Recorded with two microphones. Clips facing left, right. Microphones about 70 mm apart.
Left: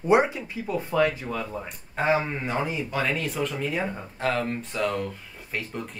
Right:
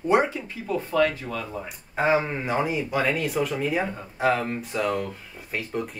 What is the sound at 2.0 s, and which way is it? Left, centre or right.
Speech, centre.